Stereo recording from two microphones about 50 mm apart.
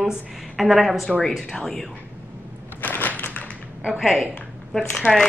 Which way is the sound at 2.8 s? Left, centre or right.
Left.